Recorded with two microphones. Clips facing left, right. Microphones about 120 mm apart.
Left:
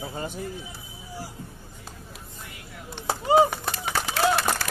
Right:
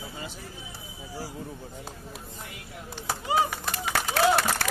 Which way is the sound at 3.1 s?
30° left (ahead or behind).